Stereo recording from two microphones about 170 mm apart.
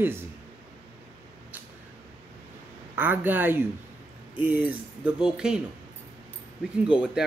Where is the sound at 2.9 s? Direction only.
10° right (ahead or behind).